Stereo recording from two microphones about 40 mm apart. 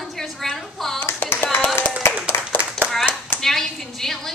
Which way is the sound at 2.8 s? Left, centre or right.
Centre.